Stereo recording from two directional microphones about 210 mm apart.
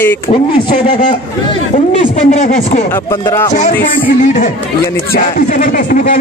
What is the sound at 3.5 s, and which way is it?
Speech, 40° left (ahead or behind).